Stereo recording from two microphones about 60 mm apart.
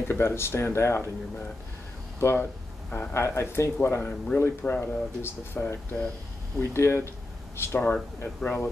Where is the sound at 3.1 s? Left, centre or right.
Left.